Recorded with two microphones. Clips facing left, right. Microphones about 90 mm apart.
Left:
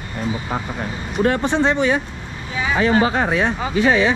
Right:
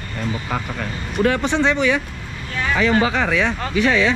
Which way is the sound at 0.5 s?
25° left (ahead or behind).